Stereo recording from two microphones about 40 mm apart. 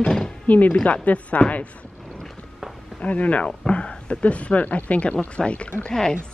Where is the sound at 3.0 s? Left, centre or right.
Left.